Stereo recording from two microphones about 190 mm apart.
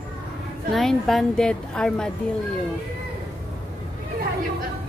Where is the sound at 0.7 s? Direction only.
Centre (ahead or behind).